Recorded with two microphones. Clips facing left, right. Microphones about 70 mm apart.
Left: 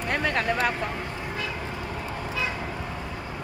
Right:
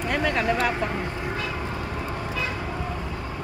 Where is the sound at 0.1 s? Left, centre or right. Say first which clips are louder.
Right 1 dB; left.